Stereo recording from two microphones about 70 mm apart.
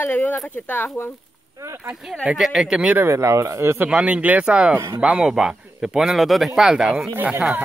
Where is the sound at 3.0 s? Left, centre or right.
Right.